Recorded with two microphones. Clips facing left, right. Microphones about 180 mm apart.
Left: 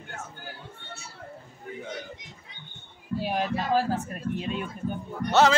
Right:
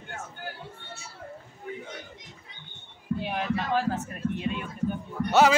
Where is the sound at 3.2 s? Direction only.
35° left (ahead or behind).